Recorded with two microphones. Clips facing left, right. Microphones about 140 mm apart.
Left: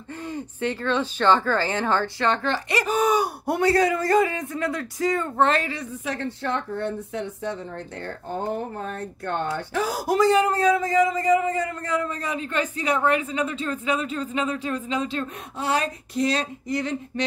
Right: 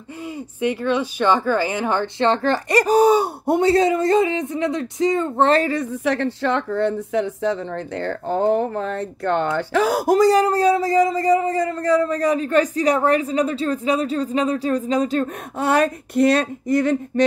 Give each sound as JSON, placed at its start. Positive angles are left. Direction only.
{"t": 0.3, "sound": "speech", "side_deg": -10}
{"t": 2.2, "sound": "speech", "side_deg": -35}
{"t": 5.5, "sound": "speech", "side_deg": -40}
{"t": 6.0, "sound": "speech", "side_deg": -85}
{"t": 10.0, "sound": "speech", "side_deg": -40}